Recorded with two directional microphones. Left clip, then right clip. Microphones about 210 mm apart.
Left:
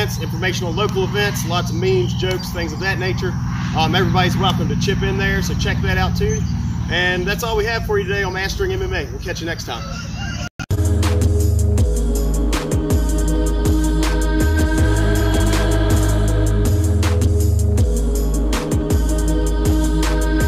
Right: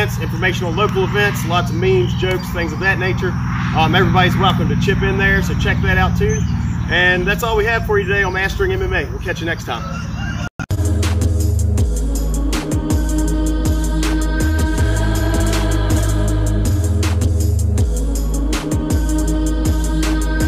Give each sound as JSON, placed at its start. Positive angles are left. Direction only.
{"t": 0.0, "sound": "speech", "side_deg": 0}
{"t": 13.4, "sound": "music", "side_deg": 0}